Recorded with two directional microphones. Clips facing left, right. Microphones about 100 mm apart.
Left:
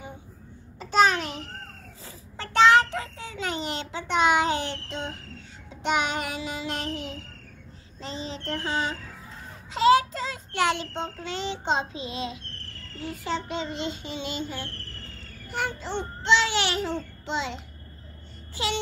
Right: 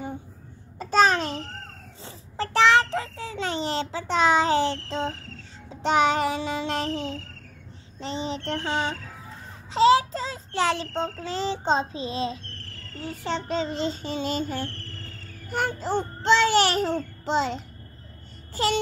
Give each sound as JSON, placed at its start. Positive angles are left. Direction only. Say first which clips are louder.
{"t": 0.7, "sound": "babbling", "louder": "right 1 dB", "side_deg": -40}
{"t": 2.0, "sound": "child singing", "louder": "right 9 dB", "side_deg": -30}
{"t": 8.0, "sound": "speech", "louder": "right 5 dB", "side_deg": -25}
{"t": 9.7, "sound": "child singing", "louder": "right 1 dB", "side_deg": -25}
{"t": 16.3, "sound": "babbling", "louder": "right 4 dB", "side_deg": -40}
{"t": 17.2, "sound": "a child's voice", "louder": "right 8 dB", "side_deg": -40}
{"t": 18.5, "sound": "a sound", "louder": "right 5 dB", "side_deg": -45}